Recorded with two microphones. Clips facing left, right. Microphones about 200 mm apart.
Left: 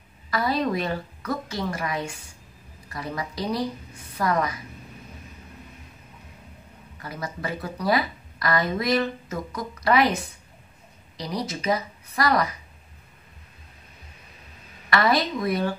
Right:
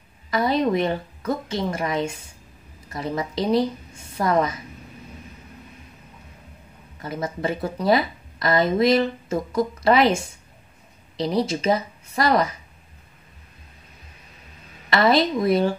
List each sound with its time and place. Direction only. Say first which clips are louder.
0.3 s speech: right 4 dB; 20° right (ahead or behind)
7.0 s speech: right 6 dB; 25° right (ahead or behind)
14.9 s speech: right 4 dB; 25° right (ahead or behind)